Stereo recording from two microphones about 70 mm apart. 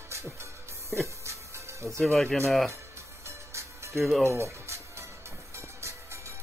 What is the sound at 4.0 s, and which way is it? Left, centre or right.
Speech, centre.